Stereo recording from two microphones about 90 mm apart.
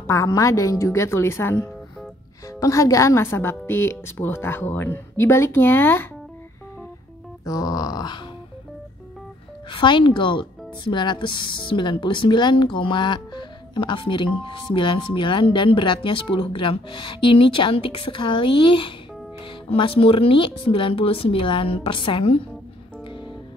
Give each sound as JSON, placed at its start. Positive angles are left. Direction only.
{"t": 0.0, "sound": "a woman's voice", "side_deg": 35}
{"t": 7.4, "sound": "grunt", "side_deg": 45}
{"t": 9.7, "sound": "speech", "side_deg": 65}
{"t": 19.7, "sound": "speech", "side_deg": 90}